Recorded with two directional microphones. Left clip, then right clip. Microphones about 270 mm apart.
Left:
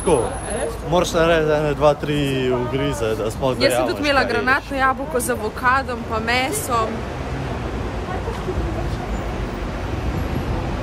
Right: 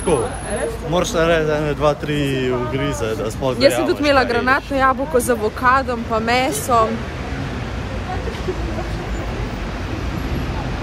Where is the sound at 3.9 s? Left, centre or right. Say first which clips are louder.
Right 3 dB; centre.